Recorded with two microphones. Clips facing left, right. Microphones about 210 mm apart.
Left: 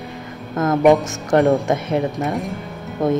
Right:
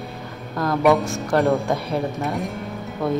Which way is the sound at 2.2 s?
Centre (ahead or behind).